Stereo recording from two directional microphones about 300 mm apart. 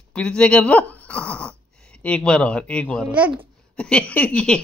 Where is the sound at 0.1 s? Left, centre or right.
Centre.